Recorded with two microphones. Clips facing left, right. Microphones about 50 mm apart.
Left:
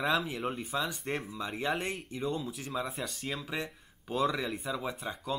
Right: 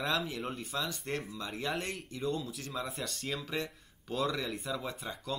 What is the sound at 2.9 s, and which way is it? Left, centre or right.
Speech, centre.